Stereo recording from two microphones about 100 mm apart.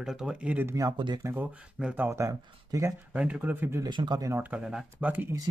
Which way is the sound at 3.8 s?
45° right (ahead or behind).